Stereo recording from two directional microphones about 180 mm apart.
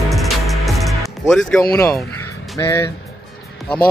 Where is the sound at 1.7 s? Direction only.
15° left (ahead or behind).